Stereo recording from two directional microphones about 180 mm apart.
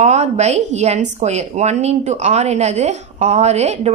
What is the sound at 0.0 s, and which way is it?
A woman's voice, 40° right (ahead or behind).